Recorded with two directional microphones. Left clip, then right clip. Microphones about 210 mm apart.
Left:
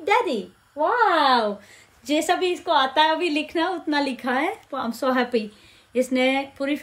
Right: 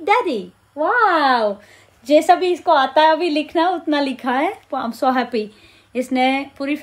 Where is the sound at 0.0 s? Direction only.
20° right (ahead or behind).